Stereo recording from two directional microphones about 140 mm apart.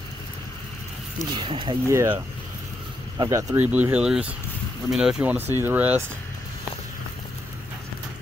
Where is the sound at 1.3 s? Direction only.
35° right (ahead or behind).